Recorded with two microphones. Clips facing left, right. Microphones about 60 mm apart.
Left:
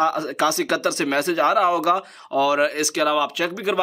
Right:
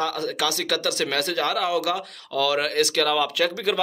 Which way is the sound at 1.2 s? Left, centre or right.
Centre.